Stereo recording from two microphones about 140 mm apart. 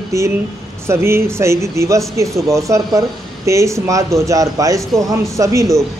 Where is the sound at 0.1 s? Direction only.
20° right (ahead or behind).